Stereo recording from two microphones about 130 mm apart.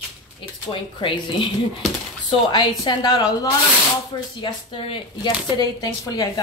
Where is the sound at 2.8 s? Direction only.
35° left (ahead or behind).